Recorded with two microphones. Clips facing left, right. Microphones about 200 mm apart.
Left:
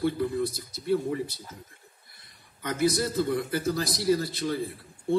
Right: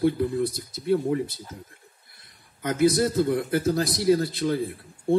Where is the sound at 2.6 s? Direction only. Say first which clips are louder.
Right 5 dB; 55° right (ahead or behind).